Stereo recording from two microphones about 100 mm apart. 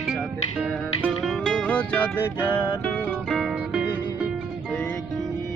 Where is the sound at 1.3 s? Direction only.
5° left (ahead or behind).